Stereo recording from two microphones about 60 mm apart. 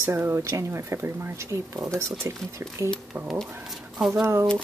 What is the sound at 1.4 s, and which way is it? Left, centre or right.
Speech, right.